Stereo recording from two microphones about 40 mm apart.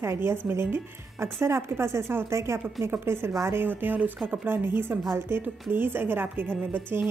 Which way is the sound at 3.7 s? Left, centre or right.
Right.